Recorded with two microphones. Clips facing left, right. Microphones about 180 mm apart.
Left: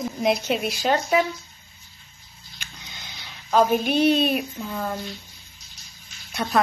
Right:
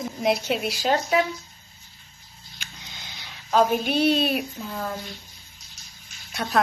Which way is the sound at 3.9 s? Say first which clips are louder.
Left 2 dB; 50° left (ahead or behind).